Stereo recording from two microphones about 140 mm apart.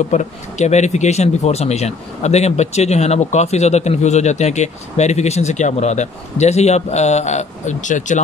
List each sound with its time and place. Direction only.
0.1 s speech: 55° left (ahead or behind)